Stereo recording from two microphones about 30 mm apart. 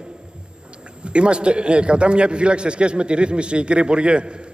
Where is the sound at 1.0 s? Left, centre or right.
Right.